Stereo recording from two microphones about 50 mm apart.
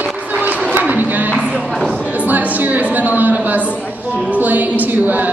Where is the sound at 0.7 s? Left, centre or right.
Right.